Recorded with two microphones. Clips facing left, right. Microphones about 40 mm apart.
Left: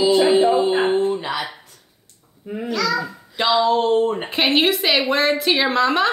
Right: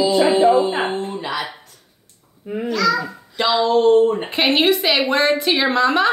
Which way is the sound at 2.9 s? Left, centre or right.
Centre.